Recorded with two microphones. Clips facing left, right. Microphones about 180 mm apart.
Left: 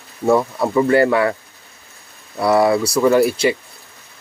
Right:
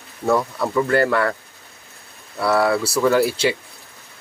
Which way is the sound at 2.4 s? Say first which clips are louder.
Left 4 dB; 20° left (ahead or behind).